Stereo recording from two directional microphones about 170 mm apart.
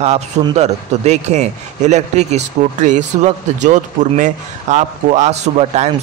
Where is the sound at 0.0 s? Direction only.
40° right (ahead or behind).